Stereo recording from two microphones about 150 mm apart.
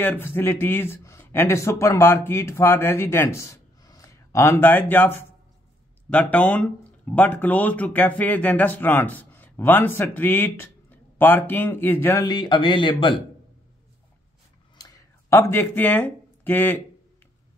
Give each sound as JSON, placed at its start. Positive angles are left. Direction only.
{"t": 0.0, "sound": "speech", "side_deg": 15}
{"t": 12.3, "sound": "speech", "side_deg": 30}
{"t": 14.8, "sound": "a sound", "side_deg": 20}